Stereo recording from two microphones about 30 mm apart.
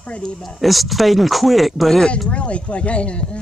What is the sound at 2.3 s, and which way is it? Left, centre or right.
Speech, left.